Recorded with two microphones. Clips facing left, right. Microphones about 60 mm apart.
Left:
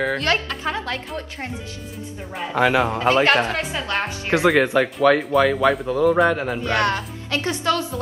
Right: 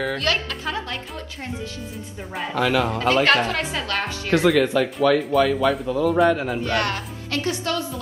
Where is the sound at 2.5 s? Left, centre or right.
Left.